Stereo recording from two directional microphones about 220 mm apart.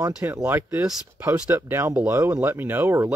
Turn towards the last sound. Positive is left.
turn(degrees=-10)  # may be behind; listen again after turning